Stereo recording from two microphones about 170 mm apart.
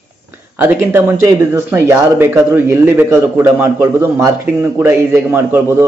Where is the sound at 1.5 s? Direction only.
15° right (ahead or behind).